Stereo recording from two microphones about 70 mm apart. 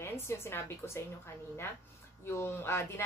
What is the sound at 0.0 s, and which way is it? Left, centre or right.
A woman's voice, left.